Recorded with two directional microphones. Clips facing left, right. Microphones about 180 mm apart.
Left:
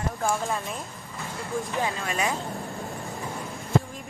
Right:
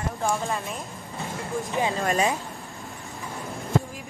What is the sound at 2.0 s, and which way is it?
Speech, 35° right (ahead or behind).